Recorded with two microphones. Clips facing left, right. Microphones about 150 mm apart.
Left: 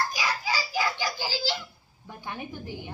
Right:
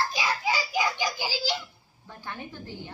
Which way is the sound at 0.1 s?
25° right (ahead or behind).